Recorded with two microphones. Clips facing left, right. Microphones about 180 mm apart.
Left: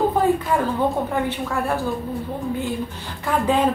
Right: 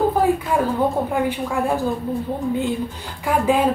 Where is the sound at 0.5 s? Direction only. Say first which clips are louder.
Right 1 dB; 10° right (ahead or behind).